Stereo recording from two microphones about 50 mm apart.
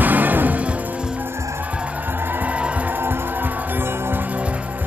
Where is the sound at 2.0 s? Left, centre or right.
Right.